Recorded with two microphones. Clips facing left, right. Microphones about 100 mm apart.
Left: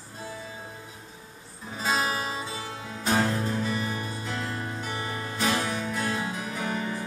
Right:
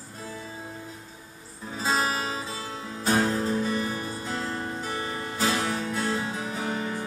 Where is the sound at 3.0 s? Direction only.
30° right (ahead or behind).